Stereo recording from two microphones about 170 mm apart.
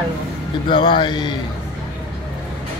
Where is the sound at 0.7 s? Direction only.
30° left (ahead or behind).